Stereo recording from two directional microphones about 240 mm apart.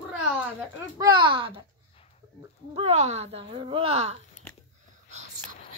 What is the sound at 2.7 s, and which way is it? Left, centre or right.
A woman's voice, right.